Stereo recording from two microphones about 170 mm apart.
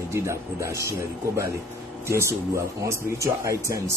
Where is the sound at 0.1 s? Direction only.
15° right (ahead or behind).